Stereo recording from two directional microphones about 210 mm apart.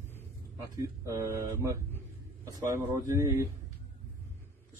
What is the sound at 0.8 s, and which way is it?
Speech, 15° right (ahead or behind).